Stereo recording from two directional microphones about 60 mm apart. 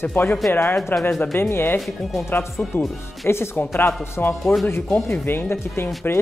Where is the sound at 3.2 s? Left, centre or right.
Left.